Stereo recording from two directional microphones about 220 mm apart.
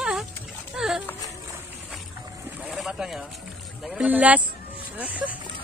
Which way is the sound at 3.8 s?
Centre (ahead or behind).